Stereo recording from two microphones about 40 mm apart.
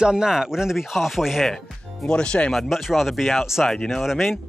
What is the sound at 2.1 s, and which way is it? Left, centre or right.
Speech, left.